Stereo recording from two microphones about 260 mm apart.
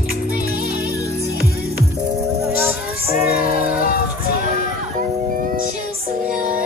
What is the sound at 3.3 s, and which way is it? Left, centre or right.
Music, left.